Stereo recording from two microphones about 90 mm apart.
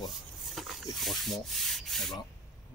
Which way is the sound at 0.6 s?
Centre (ahead or behind).